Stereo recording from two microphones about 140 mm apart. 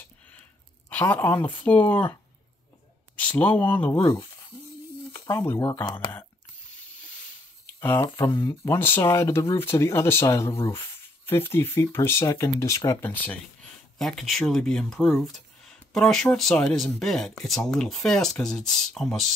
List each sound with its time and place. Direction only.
0.8 s a woman's voice: 10° left (ahead or behind)
3.2 s speech: 10° left (ahead or behind)
5.1 s speech: 20° left (ahead or behind)
8.2 s speech: 20° left (ahead or behind); by 19.3 s centre (ahead or behind)